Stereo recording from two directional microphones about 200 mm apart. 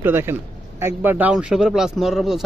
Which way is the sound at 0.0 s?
10° right (ahead or behind).